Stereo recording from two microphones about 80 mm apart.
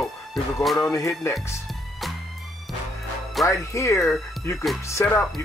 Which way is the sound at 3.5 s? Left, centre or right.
Left.